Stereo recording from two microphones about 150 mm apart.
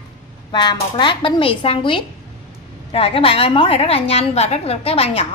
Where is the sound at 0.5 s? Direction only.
30° left (ahead or behind).